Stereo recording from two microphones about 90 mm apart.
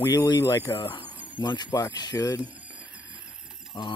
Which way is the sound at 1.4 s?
50° left (ahead or behind).